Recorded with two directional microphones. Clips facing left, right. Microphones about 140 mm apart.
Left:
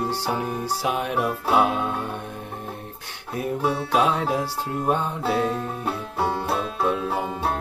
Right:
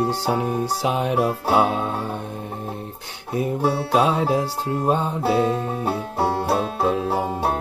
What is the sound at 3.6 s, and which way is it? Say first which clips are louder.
Music: right 2 dB; 30° right (ahead or behind).